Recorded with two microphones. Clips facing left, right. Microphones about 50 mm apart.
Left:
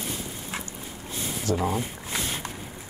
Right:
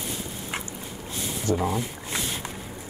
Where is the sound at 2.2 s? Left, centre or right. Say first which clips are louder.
Even; left.